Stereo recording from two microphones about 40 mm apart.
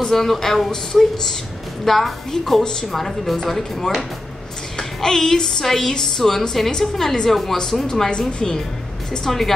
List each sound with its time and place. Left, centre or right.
0.1 s a woman's voice: centre
9.2 s a woman's voice: centre